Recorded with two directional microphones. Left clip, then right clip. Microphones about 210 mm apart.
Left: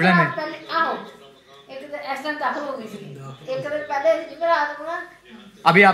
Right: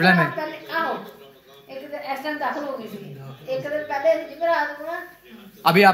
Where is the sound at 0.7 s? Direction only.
5° left (ahead or behind).